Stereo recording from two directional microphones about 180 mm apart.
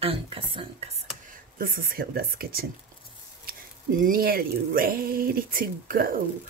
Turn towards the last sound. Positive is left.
turn(degrees=-55)  # may be behind; listen again after turning